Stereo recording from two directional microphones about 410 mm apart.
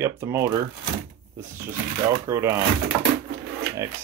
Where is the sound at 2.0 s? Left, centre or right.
Centre.